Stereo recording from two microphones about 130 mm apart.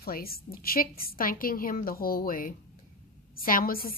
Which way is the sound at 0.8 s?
90° left.